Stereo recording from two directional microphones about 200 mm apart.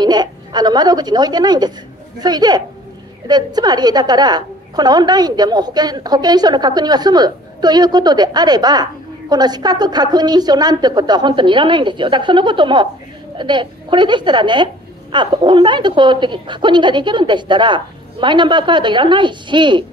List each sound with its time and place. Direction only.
0.0 s a woman's voice: 20° right (ahead or behind)